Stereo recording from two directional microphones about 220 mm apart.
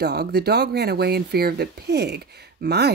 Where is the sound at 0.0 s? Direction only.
50° right (ahead or behind).